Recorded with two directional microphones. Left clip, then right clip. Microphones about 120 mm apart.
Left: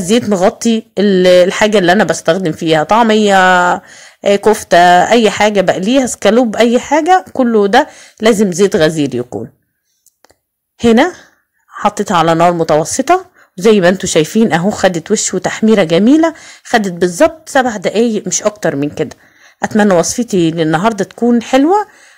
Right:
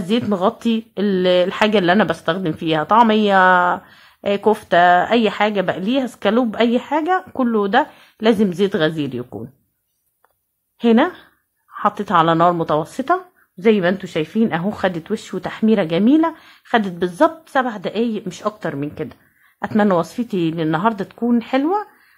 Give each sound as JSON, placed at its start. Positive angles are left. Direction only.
{"t": 0.6, "sound": "speech", "side_deg": 35}
{"t": 10.8, "sound": "speech", "side_deg": 35}
{"t": 12.5, "sound": "speech", "side_deg": 35}
{"t": 13.0, "sound": "speech", "side_deg": 60}
{"t": 19.8, "sound": "speech", "side_deg": 35}